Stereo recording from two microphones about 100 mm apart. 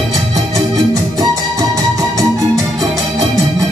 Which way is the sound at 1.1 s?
35° right (ahead or behind).